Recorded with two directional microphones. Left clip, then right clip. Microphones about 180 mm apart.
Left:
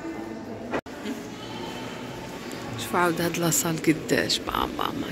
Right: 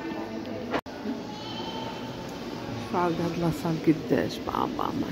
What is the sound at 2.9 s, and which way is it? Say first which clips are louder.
Speech: left 4 dB; 10° left (ahead or behind).